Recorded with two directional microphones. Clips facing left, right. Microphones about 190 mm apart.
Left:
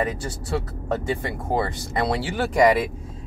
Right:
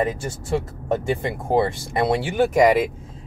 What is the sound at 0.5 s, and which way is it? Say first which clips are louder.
Speech: right 3 dB; 20° right (ahead or behind).